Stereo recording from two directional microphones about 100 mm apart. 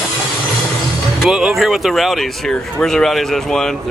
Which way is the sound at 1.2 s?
5° right (ahead or behind).